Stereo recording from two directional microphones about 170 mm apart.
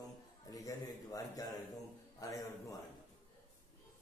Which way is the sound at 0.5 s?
20° left (ahead or behind).